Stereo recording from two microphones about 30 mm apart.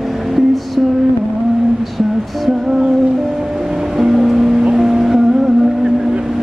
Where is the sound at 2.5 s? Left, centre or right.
Centre.